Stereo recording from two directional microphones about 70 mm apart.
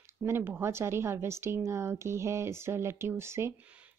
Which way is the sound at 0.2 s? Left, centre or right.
Right.